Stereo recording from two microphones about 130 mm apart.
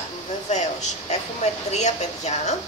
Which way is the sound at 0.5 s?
65° left (ahead or behind).